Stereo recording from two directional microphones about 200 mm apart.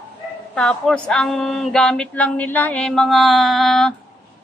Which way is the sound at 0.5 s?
5° left (ahead or behind).